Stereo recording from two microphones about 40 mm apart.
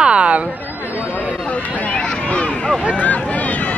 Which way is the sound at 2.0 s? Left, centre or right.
Left.